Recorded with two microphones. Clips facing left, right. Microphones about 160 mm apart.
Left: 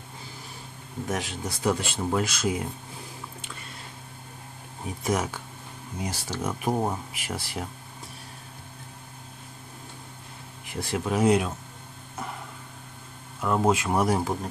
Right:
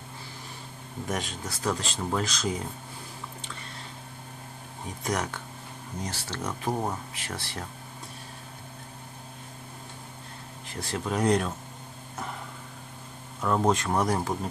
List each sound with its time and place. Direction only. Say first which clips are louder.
1.0 s speech: left 2 dB; 5° left (ahead or behind)
4.8 s speech: left 3 dB; 5° left (ahead or behind)
10.7 s speech: left 3 dB; 10° left (ahead or behind)
13.4 s speech: left 1 dB; 5° left (ahead or behind)